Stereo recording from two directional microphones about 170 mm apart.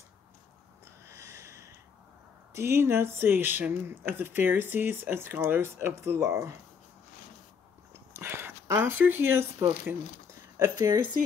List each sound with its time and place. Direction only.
1.0 s owl: 15° right (ahead or behind)
2.5 s speech: 15° right (ahead or behind)
8.2 s speech: 15° right (ahead or behind)